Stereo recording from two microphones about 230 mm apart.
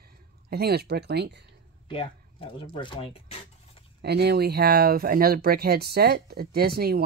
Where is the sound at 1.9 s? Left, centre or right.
Left.